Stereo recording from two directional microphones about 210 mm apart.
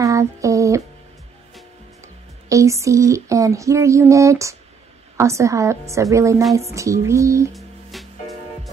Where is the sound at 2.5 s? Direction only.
15° right (ahead or behind).